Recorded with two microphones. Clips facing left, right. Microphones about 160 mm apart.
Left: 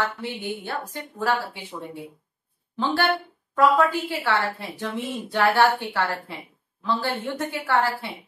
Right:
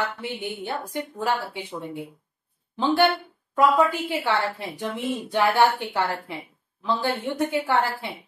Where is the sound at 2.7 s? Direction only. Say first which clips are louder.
Right 3 dB; 15° right (ahead or behind).